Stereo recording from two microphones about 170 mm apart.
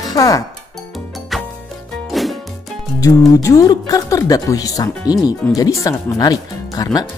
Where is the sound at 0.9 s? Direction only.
Centre (ahead or behind).